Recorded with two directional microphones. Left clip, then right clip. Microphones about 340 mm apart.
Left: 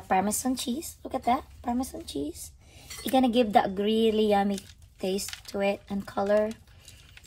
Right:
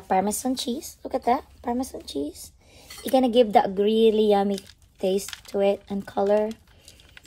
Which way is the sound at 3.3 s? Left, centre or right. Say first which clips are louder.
Right 5 dB; centre.